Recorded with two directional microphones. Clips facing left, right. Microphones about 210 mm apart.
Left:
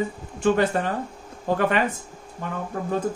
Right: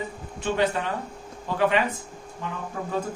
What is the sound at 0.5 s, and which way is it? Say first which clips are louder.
Speech: left 2 dB; 45° left (ahead or behind).